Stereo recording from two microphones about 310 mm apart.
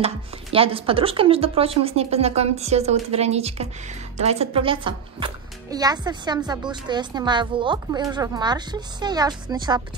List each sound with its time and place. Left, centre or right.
0.0 s a child's voice: centre